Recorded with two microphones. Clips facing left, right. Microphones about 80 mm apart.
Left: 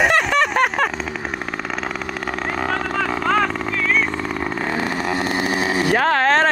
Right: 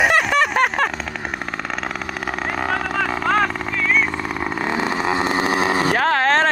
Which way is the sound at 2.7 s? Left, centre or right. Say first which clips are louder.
Right 1 dB; centre.